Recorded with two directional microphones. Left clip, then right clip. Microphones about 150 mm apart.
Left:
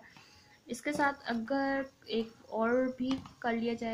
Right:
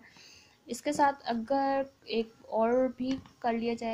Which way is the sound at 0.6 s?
25° right (ahead or behind).